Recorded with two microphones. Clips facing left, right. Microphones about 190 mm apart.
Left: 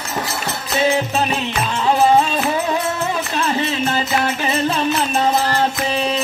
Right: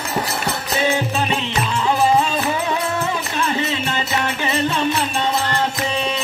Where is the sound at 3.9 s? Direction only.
35° left (ahead or behind).